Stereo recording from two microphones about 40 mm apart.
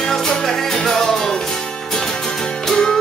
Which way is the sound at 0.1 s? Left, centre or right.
Centre.